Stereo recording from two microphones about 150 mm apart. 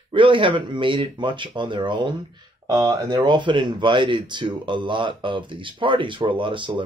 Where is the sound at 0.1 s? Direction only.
35° right (ahead or behind).